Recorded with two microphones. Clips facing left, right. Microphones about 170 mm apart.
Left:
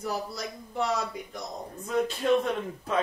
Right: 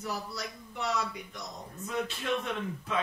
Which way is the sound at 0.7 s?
40° left (ahead or behind).